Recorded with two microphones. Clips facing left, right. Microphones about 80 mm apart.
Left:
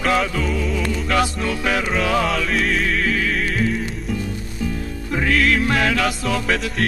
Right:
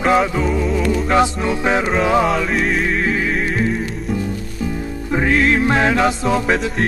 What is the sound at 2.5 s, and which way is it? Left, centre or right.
Music, centre.